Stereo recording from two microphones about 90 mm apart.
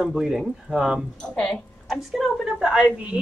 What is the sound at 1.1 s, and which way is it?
A woman's voice, 10° left (ahead or behind).